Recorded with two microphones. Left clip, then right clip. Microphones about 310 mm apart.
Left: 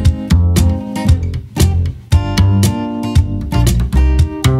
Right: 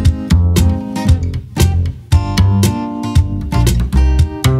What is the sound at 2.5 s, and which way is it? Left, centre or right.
Music, left.